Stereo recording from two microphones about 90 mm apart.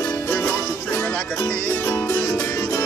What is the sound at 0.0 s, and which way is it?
Music, 20° left (ahead or behind).